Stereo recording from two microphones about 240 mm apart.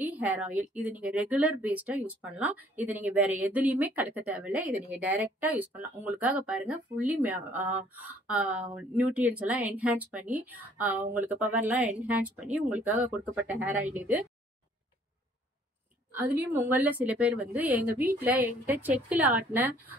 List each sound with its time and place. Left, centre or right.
0.0 s a sound: centre
0.7 s speech: centre
16.1 s speech: centre